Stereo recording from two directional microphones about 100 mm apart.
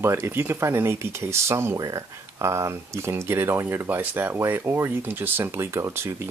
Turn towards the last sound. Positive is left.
turn(degrees=-30)  # may be behind; listen again after turning